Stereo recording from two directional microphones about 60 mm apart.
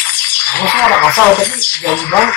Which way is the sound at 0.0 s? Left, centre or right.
Left.